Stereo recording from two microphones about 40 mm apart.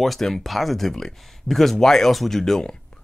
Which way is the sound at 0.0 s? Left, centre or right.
Centre.